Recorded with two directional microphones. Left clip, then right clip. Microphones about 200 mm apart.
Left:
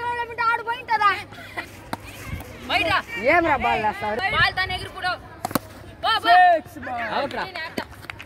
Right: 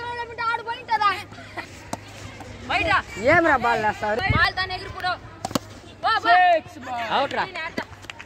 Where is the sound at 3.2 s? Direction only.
35° right (ahead or behind).